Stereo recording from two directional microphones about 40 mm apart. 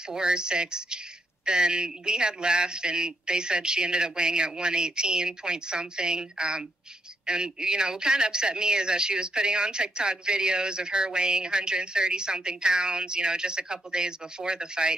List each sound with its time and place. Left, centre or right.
0.1 s speech: right